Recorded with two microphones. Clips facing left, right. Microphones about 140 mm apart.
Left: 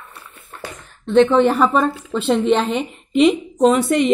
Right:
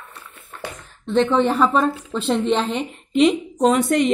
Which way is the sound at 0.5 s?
Centre (ahead or behind).